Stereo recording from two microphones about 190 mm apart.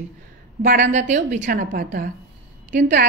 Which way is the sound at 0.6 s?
60° right (ahead or behind).